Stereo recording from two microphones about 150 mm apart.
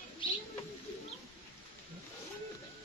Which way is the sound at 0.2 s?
35° left (ahead or behind).